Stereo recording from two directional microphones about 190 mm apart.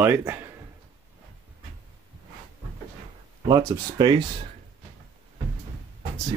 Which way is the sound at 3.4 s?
20° right (ahead or behind).